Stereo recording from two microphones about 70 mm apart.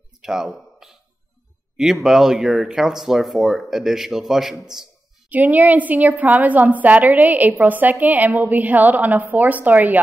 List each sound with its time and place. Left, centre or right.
0.2 s speech: centre
5.3 s a woman's voice: right